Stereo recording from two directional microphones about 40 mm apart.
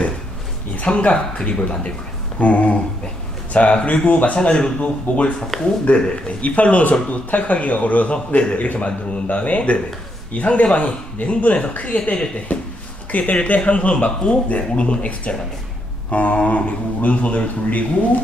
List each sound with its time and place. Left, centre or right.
0.8 s speech: left
4.4 s speech: left
5.5 s speech: centre
5.9 s speech: left
6.4 s speech: left